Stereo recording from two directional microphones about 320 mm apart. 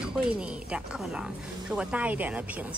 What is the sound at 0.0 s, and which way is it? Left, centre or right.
Speech, centre.